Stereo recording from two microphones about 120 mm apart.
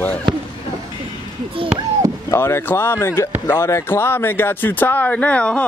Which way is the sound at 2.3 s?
20° left (ahead or behind).